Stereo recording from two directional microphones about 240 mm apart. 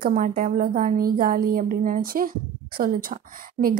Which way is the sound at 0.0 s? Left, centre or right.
Right.